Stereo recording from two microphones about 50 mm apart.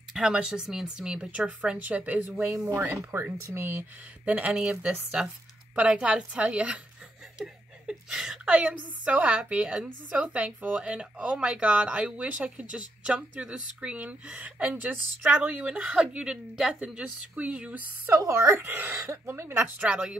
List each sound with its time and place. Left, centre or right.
0.1 s speech: centre; by 2.4 s right
2.6 s speech: right
4.2 s speech: right
8.5 s speech: right
15.8 s speech: centre
17.4 s speech: right
18.1 s speech: right
18.6 s a woman's voice: right
19.6 s speech: right